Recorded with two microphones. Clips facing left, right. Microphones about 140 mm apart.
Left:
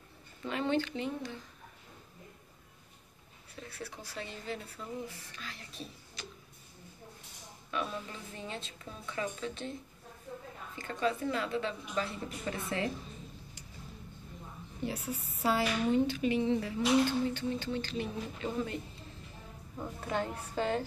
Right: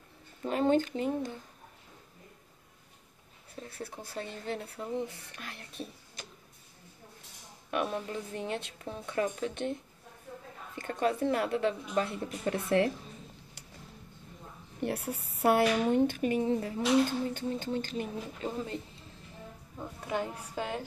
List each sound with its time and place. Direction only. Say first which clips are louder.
0.4 s speech: right 5 dB; 40° right (ahead or behind)
3.8 s speech: right 3 dB; 50° right (ahead or behind)
7.7 s speech: right 5 dB; 60° right (ahead or behind)
10.8 s a woman's voice: right 3 dB; 55° right (ahead or behind)
14.8 s a woman's voice: right 3 dB; 60° right (ahead or behind)
20.1 s a woman's voice: right 1 dB; 10° right (ahead or behind)